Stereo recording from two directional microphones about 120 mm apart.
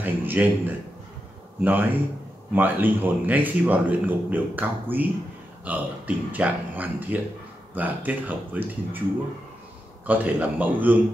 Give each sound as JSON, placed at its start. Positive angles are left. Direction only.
{"t": 0.0, "sound": "a sound", "side_deg": -15}
{"t": 1.6, "sound": "speech", "side_deg": -15}
{"t": 10.0, "sound": "speech", "side_deg": -15}